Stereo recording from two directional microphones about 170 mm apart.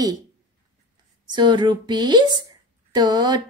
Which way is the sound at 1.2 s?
25° right (ahead or behind).